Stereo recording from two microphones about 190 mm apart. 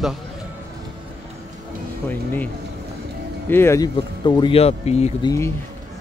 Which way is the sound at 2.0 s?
10° left (ahead or behind).